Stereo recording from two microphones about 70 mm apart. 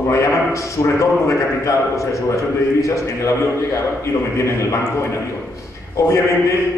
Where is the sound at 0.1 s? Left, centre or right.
Left.